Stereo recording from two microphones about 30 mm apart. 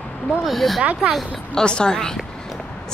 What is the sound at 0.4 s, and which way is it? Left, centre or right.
Speech, centre.